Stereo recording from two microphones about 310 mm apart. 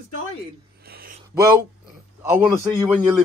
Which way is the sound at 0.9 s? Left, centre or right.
Right.